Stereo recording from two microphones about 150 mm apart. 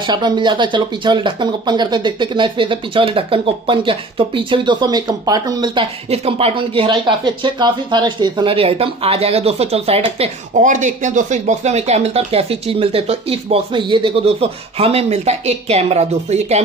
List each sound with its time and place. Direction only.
0.0 s speech: 30° right (ahead or behind)
6.0 s speech: 45° right (ahead or behind)
10.6 s speech: 55° right (ahead or behind)